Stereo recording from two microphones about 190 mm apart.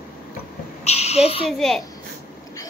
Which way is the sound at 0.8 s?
35° left (ahead or behind).